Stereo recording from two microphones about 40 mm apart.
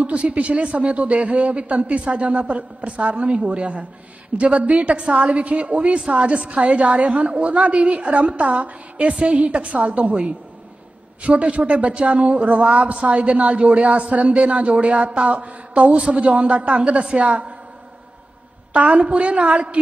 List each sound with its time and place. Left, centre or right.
0.0 s a man's voice: right
11.2 s a man's voice: right
18.7 s a man's voice: right